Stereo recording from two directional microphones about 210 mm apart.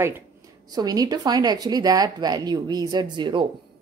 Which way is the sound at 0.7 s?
20° right (ahead or behind).